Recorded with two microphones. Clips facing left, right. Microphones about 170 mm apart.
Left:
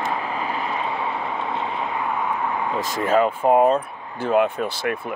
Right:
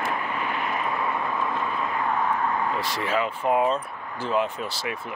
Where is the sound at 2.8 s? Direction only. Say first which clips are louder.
Left 7 dB; 45° left (ahead or behind).